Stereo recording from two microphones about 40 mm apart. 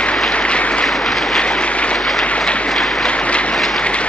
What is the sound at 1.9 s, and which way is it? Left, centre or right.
Applause, centre.